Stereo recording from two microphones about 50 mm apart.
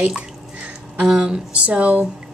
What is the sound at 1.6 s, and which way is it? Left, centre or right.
Speech, right.